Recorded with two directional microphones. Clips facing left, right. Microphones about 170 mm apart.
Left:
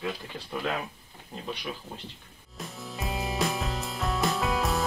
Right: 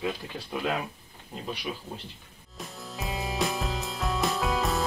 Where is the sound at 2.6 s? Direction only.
Centre (ahead or behind).